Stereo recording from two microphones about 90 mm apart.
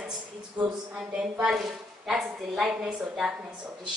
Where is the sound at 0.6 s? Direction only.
15° right (ahead or behind).